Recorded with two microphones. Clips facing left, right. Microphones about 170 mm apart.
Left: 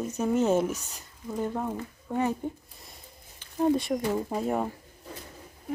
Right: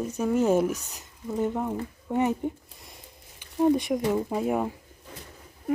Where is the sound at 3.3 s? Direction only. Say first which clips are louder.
Right 2 dB; 15° right (ahead or behind).